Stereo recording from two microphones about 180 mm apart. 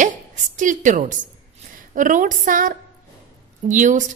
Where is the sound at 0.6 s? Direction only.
45° right (ahead or behind).